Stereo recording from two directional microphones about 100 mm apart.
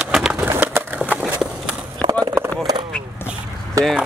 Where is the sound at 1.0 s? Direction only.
10° right (ahead or behind).